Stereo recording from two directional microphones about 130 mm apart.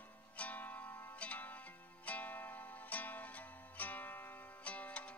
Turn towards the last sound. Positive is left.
turn(degrees=10)  # may be behind; listen again after turning